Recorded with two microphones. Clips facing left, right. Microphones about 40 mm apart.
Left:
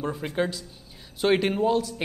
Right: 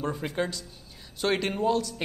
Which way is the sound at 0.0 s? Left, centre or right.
Centre.